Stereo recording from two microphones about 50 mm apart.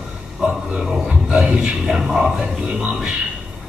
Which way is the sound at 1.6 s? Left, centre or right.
Centre.